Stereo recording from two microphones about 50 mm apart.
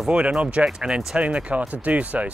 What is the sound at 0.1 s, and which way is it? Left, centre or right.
Speech, right.